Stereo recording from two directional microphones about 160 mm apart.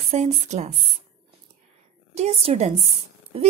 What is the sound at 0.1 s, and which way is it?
Speech, 45° right (ahead or behind).